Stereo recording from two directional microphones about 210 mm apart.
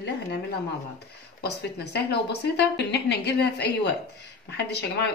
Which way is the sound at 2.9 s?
50° left (ahead or behind).